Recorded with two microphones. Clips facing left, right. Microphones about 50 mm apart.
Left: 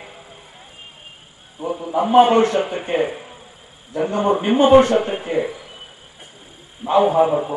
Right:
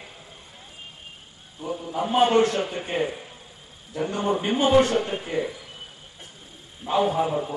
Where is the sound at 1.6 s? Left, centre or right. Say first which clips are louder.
Left 7 dB; left.